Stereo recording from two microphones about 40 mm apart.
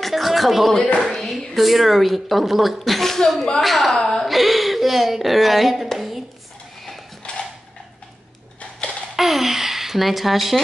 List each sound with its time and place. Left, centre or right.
0.0 s music: centre
1.0 s a sound: centre
1.5 s a woman's voice: centre
4.3 s speech: centre
7.2 s creak: left
9.1 s a sound: centre